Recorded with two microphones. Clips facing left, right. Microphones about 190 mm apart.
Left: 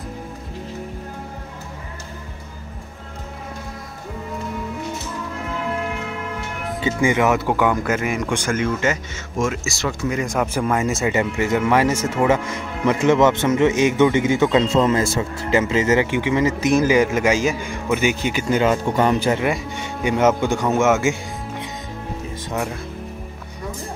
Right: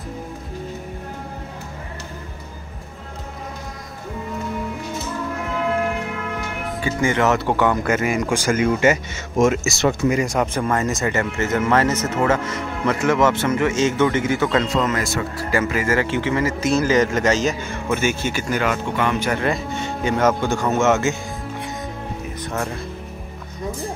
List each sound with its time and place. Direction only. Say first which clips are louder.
6.8 s a man's voice: left 1 dB; 15° left (ahead or behind); by 9.0 s 10° right (ahead or behind)
9.4 s speech: right 6 dB; 20° right (ahead or behind)
10.3 s a man's voice: even; 5° left (ahead or behind); by 18.8 s 25° left (ahead or behind)
18.9 s speech: left 4 dB; 35° left (ahead or behind)
19.3 s a man's voice: even; 15° left (ahead or behind)